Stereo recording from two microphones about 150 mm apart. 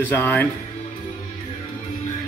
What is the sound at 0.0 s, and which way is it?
Speech, 10° left (ahead or behind).